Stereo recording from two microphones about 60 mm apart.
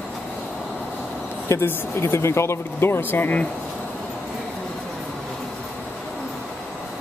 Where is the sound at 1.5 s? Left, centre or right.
Left.